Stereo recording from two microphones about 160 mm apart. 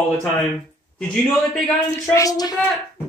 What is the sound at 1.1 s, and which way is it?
Speech, centre (ahead or behind).